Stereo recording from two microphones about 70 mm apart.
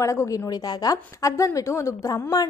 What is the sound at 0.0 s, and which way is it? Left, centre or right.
Speech, left.